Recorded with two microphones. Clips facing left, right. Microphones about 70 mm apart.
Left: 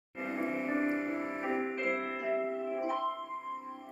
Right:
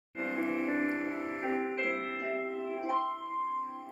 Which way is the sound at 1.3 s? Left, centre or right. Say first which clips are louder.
Right 1 dB; centre.